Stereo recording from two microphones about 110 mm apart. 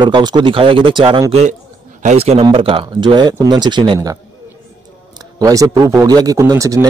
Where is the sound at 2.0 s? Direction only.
70° right (ahead or behind).